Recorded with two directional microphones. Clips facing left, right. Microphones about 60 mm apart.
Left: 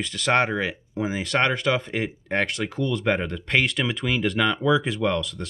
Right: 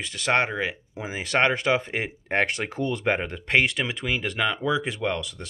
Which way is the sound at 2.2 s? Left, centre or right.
Right.